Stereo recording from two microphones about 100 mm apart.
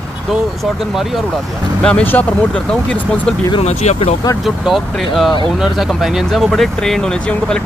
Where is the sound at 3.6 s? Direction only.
90° left.